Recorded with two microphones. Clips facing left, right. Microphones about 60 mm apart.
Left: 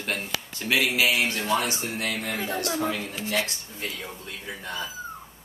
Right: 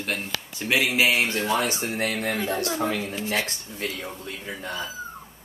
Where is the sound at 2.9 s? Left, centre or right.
Right.